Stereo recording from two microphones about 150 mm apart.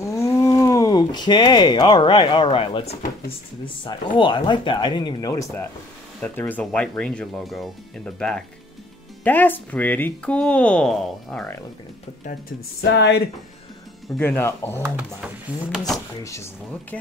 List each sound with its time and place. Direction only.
0.0 s speech: 20° left (ahead or behind); by 11.4 s centre (ahead or behind)
14.2 s speech: 15° left (ahead or behind)
14.8 s speech: 10° right (ahead or behind)
16.2 s speech: 20° left (ahead or behind)